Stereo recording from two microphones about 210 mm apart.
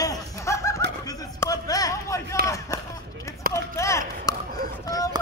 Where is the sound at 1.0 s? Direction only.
15° left (ahead or behind).